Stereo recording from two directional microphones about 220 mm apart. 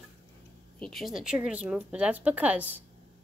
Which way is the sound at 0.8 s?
Centre (ahead or behind).